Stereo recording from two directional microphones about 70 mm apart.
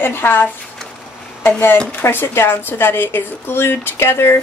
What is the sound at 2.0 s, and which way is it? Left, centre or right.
A woman's voice, left.